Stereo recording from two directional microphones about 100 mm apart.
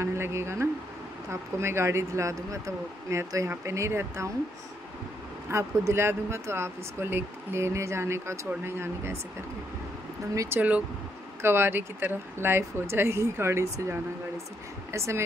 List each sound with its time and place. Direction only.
0.0 s speech: 25° right (ahead or behind)
5.5 s speech: 30° right (ahead or behind)
10.3 s speech: 35° right (ahead or behind)